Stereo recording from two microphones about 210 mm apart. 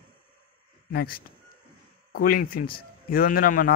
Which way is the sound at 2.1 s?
45° left (ahead or behind).